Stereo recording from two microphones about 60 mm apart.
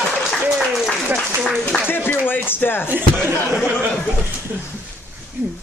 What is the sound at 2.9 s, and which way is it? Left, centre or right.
Speech, right.